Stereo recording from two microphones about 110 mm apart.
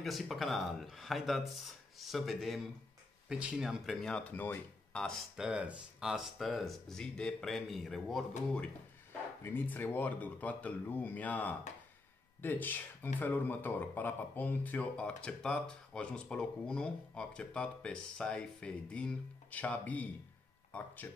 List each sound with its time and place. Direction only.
0.0 s speech: centre (ahead or behind)
5.3 s speech: 10° right (ahead or behind)
9.4 s speech: 20° left (ahead or behind)